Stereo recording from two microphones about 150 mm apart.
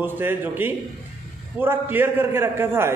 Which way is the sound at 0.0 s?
15° right (ahead or behind).